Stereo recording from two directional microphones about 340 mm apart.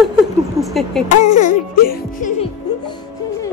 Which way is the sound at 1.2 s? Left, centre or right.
Left.